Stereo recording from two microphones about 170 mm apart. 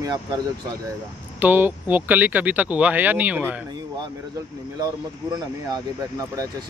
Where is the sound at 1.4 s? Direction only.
10° right (ahead or behind).